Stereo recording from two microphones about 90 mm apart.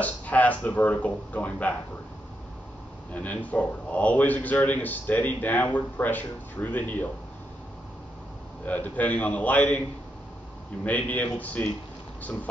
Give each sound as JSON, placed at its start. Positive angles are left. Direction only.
{"t": 0.0, "sound": "a man's voice", "side_deg": 15}
{"t": 3.1, "sound": "a man's voice", "side_deg": 15}
{"t": 8.6, "sound": "a man's voice", "side_deg": 15}